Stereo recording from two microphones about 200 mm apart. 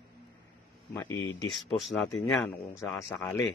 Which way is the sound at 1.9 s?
Centre (ahead or behind).